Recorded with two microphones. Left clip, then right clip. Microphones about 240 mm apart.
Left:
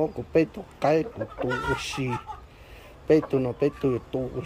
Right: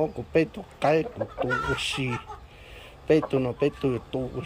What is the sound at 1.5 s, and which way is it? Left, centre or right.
Speech, left.